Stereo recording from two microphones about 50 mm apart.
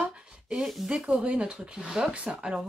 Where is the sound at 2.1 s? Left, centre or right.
Right.